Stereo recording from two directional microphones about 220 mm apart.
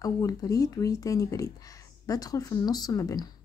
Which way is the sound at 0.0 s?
15° left (ahead or behind).